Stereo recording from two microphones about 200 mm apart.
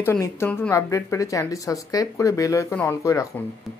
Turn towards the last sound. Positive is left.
turn(degrees=15)  # may be behind; listen again after turning